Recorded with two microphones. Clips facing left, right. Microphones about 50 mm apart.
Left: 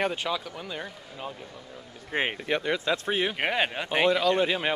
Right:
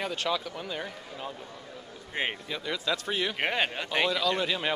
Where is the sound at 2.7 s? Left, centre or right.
Left.